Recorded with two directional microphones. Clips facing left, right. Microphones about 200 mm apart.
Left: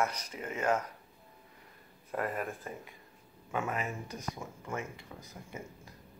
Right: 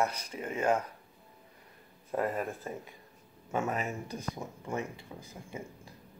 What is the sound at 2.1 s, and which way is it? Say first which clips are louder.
Speech: right 3 dB; 20° right (ahead or behind).